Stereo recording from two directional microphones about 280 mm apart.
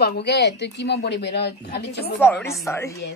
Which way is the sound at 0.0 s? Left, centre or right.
Left.